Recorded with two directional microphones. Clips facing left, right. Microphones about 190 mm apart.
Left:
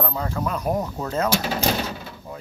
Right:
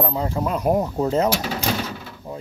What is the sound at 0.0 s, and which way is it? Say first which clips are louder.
Speech: right 3 dB; 25° right (ahead or behind).